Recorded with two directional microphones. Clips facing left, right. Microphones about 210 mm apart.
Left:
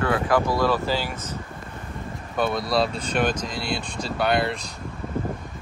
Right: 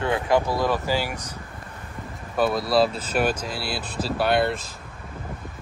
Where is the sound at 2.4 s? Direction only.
Centre (ahead or behind).